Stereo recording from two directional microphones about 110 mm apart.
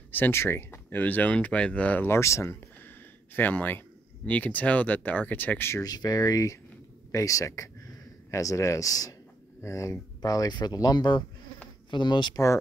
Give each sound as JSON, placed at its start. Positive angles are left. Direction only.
{"t": 0.1, "sound": "speech", "side_deg": 20}
{"t": 5.9, "sound": "speech", "side_deg": 35}